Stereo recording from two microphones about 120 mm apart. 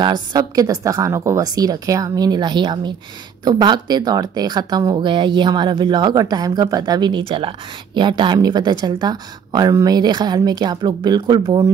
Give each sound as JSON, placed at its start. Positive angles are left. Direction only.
{"t": 0.0, "sound": "speech", "side_deg": -35}